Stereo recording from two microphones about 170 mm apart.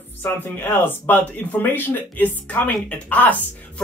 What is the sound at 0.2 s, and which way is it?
Speech, 10° left (ahead or behind).